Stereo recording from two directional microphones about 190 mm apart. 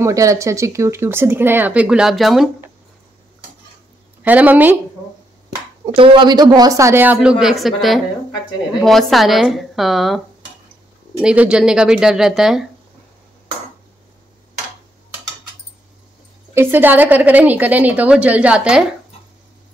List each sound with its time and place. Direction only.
0.0 s speech: 15° right (ahead or behind)
4.2 s speech: 10° right (ahead or behind)
5.9 s speech: 25° right (ahead or behind); by 12.6 s centre (ahead or behind)
16.5 s speech: 10° right (ahead or behind)